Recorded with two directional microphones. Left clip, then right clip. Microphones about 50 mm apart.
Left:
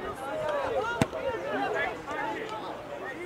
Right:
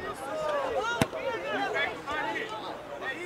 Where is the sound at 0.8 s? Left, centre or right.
Centre.